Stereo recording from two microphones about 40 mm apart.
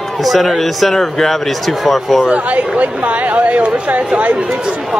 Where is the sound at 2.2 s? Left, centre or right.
Right.